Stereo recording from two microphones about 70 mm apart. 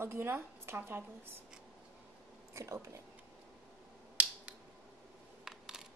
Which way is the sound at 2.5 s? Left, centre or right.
Right.